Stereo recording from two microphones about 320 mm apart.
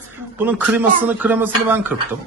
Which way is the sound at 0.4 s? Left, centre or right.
Centre.